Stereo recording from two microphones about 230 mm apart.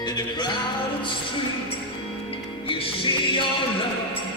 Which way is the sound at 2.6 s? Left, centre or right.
Left.